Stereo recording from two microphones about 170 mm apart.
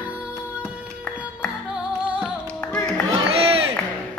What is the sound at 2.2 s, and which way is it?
Music, 5° left (ahead or behind).